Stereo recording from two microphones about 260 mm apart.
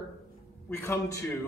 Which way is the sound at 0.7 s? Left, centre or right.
Centre.